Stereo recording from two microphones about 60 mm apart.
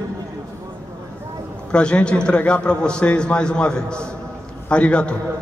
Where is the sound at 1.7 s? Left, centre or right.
Centre.